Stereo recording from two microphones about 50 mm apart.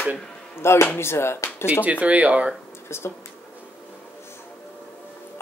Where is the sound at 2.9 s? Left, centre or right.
Left.